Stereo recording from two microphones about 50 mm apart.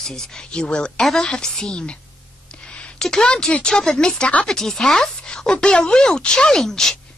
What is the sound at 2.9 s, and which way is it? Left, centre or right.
A woman's voice, centre.